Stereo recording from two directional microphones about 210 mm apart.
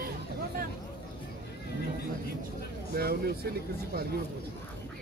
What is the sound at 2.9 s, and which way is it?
Speech, 50° right (ahead or behind).